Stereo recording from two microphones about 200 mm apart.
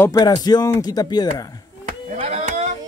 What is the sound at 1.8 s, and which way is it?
Chop, 35° right (ahead or behind).